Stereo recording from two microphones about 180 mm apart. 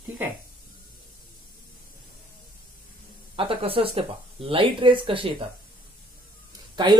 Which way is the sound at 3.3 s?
30° right (ahead or behind).